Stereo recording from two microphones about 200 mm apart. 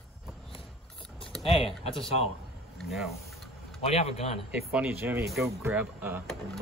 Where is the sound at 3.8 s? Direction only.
30° left (ahead or behind).